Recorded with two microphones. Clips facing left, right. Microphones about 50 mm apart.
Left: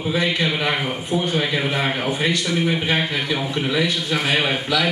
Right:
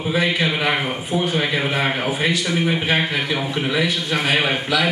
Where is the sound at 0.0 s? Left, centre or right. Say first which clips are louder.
Right 1 dB; centre.